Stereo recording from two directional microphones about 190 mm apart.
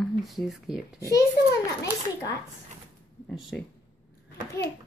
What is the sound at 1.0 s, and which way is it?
A child's voice, 15° left (ahead or behind).